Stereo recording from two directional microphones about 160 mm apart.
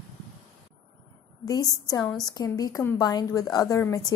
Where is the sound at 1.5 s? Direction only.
20° left (ahead or behind).